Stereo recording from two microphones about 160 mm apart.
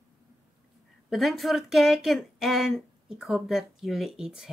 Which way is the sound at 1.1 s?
Centre (ahead or behind).